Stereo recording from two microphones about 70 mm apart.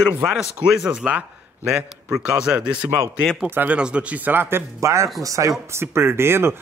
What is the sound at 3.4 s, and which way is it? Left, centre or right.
Speech, right.